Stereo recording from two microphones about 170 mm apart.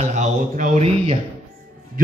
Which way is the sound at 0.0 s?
45° right (ahead or behind).